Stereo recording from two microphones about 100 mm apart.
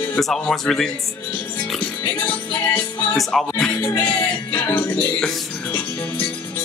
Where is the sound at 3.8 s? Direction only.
20° left (ahead or behind).